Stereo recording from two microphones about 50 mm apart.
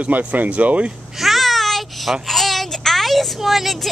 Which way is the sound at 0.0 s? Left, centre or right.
Right.